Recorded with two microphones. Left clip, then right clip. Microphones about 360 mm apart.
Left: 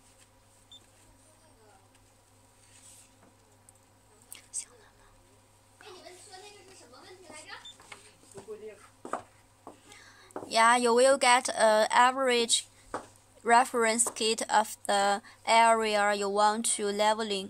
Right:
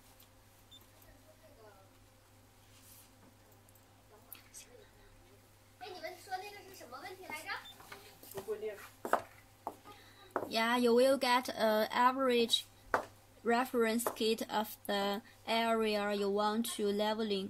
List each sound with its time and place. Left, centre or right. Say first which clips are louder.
10.5 s speech: left 8 dB; centre